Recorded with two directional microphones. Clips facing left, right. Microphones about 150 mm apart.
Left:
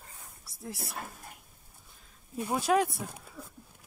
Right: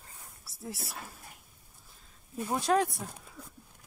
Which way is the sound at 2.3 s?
10° left (ahead or behind).